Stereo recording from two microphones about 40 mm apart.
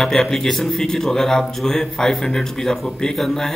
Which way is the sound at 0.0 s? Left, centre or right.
Centre.